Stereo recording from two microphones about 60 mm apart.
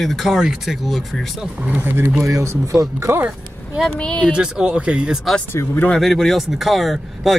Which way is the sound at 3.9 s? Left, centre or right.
Centre.